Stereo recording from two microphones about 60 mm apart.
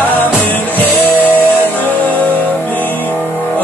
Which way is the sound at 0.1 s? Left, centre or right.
Left.